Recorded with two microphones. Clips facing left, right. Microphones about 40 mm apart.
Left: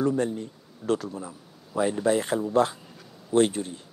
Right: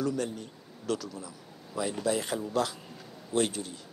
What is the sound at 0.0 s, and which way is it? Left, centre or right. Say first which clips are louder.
Speech: left 6 dB; left.